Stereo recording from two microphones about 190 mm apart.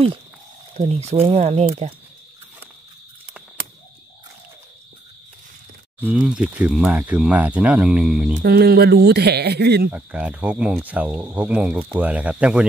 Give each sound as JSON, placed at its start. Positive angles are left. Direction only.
{"t": 0.7, "sound": "speech", "side_deg": -35}
{"t": 5.9, "sound": "speech", "side_deg": -5}
{"t": 8.4, "sound": "speech", "side_deg": -55}
{"t": 9.8, "sound": "speech", "side_deg": -5}